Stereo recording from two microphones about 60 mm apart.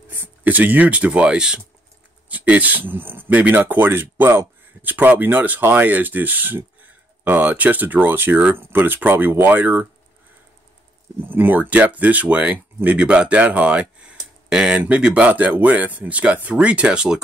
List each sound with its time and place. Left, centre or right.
0.1 s a man's voice: right
3.3 s speech: right
8.5 s speech: right
11.2 s speech: right
14.1 s a sound: centre
14.8 s speech: centre